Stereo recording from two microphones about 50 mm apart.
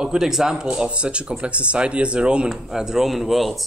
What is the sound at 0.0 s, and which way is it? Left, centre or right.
A man's voice, centre.